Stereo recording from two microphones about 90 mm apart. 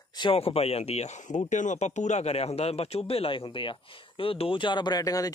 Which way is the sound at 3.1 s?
85° left.